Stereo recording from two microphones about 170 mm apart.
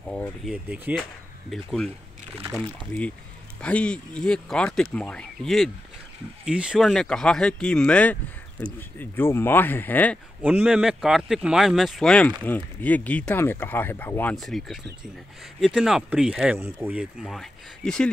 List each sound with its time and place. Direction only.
0.5 s speech: 10° right (ahead or behind)
2.9 s speech: 5° left (ahead or behind)
10.4 s speech: 5° right (ahead or behind); by 14.3 s 10° left (ahead or behind)
14.3 s speech: centre (ahead or behind)